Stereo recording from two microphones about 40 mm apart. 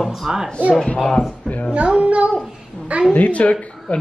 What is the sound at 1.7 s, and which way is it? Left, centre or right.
Child singing, right.